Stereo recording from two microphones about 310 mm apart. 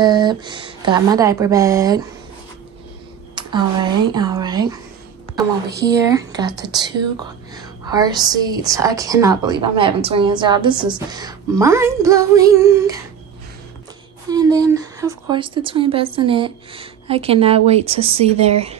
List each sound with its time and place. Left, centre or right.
0.0 s a woman's voice: centre
3.3 s a woman's voice: centre
5.9 s a woman's voice: centre
14.3 s a woman's voice: centre